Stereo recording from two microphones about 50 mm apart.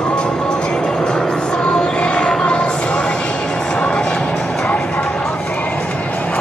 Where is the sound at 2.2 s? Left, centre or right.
Centre.